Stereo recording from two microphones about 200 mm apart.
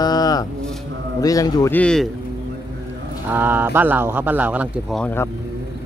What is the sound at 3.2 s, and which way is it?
Speech, 10° right (ahead or behind).